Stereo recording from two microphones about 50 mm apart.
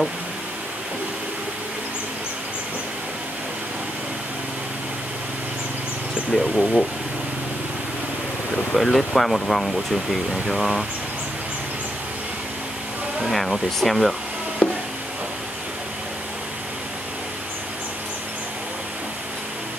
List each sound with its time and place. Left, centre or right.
6.3 s speech: centre
8.7 s speech: centre
13.3 s speech: centre
14.6 s a sound: left